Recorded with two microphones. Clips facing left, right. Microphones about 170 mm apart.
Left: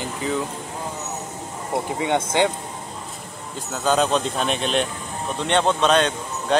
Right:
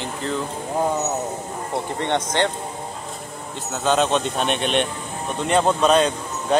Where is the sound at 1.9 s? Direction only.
5° left (ahead or behind).